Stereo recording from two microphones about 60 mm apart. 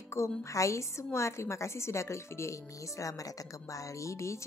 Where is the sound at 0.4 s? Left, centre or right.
Left.